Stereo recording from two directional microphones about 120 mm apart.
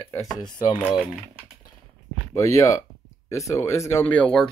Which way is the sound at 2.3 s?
25° left (ahead or behind).